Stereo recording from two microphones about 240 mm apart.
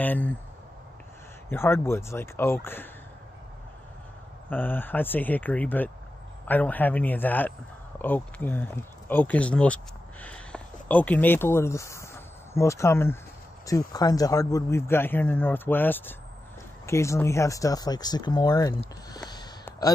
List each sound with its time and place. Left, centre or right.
0.0 s a man's voice: centre
1.5 s a man's voice: centre
4.5 s a man's voice: centre